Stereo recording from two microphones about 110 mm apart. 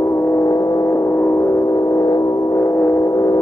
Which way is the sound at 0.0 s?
25° left (ahead or behind).